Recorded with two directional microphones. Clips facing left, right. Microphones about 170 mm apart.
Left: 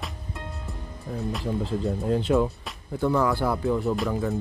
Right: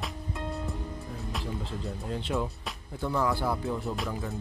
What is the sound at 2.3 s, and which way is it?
Speech, 70° left (ahead or behind).